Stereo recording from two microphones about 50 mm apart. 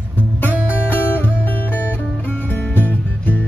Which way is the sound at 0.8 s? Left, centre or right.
Left.